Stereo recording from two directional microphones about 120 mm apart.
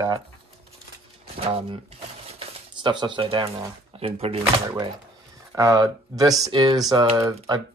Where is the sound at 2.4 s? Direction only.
40° right (ahead or behind).